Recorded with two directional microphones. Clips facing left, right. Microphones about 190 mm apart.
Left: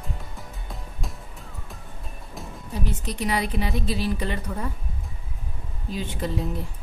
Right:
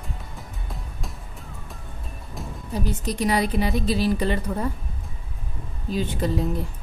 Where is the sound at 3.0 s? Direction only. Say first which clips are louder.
Right 4 dB; 40° right (ahead or behind).